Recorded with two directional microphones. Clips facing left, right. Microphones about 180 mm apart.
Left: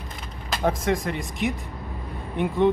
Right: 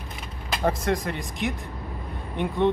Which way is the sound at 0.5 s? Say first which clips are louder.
Left 1 dB; centre (ahead or behind).